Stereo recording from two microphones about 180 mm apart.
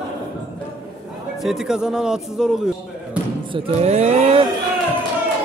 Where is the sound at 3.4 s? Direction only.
30° right (ahead or behind).